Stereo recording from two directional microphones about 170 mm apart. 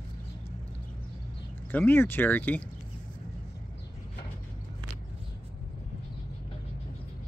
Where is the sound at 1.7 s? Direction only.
10° left (ahead or behind).